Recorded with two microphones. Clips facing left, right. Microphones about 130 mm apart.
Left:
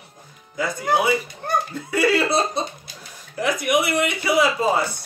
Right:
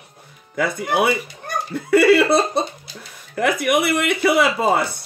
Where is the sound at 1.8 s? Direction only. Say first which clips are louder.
Right 8 dB; 60° right (ahead or behind).